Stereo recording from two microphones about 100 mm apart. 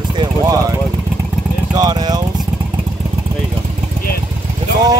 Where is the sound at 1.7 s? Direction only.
45° right (ahead or behind).